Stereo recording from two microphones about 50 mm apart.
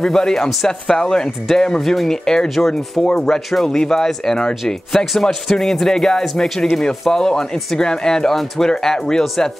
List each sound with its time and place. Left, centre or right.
0.0 s speech: centre